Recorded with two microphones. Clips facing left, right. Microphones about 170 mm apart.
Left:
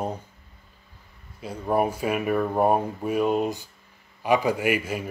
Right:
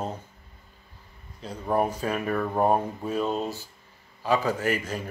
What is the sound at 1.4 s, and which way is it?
A man's voice, 10° left (ahead or behind).